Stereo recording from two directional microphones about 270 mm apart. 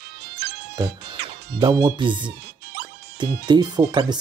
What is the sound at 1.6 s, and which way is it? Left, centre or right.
Speech, centre.